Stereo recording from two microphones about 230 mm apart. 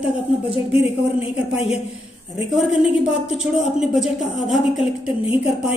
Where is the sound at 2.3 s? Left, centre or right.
Centre.